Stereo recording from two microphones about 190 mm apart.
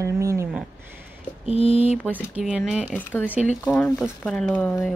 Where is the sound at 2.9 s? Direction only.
10° left (ahead or behind).